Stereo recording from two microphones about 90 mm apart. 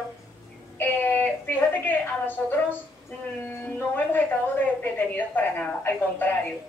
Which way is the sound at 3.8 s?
20° left (ahead or behind).